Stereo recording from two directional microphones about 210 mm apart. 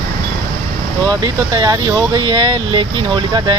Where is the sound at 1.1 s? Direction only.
20° right (ahead or behind).